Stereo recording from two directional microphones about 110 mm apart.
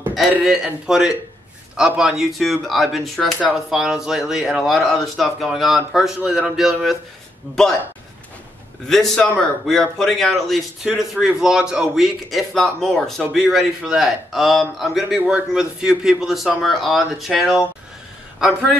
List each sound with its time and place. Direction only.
0.4 s a man's voice: 5° right (ahead or behind)
8.8 s a man's voice: 5° left (ahead or behind)